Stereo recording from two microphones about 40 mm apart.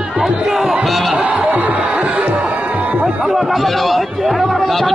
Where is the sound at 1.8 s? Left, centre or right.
Right.